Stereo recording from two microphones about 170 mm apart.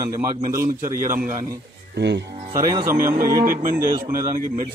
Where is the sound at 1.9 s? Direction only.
90° right.